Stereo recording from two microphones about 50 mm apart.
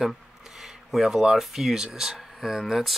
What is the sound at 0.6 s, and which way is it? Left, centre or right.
Speech, centre.